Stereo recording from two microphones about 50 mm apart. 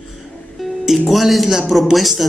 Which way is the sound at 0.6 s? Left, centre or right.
Centre.